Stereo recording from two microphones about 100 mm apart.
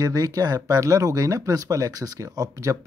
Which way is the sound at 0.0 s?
40° right (ahead or behind).